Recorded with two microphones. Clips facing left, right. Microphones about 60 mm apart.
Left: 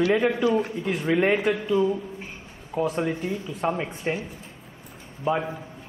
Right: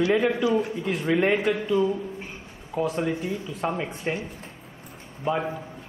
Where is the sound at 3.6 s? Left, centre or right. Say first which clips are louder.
Left 2 dB; centre.